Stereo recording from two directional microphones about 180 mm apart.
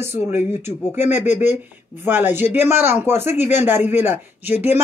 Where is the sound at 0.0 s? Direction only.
15° right (ahead or behind).